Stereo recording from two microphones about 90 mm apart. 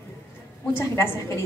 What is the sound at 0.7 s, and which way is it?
Speech, 30° left (ahead or behind).